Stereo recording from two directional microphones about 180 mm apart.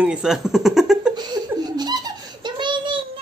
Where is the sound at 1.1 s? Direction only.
20° right (ahead or behind).